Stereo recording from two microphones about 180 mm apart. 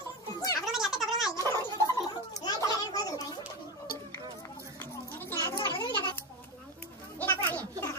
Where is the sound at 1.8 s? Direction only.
20° left (ahead or behind).